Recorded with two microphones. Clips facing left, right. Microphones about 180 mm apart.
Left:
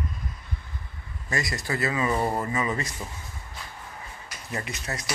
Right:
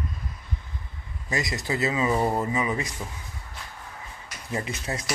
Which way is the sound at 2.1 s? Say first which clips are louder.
Right 2 dB; 5° right (ahead or behind).